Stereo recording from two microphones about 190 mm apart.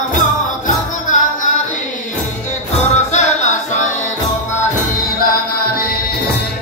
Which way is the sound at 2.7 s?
35° left (ahead or behind).